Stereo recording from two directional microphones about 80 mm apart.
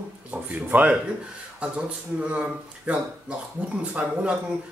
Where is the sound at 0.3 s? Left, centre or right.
Centre.